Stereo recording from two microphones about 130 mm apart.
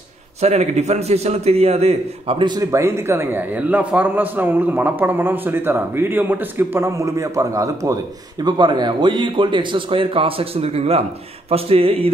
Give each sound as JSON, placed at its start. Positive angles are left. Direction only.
{"t": 0.4, "sound": "a man's voice", "side_deg": -55}
{"t": 2.7, "sound": "a man's voice", "side_deg": -20}